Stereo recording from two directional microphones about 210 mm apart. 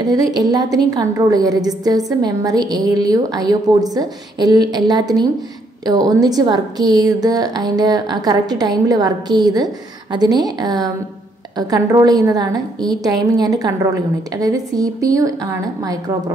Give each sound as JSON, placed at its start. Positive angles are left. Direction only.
{"t": 0.0, "sound": "a woman's voice", "side_deg": -20}